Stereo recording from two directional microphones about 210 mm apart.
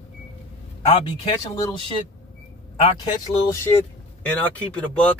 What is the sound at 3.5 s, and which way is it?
Speech, 15° left (ahead or behind).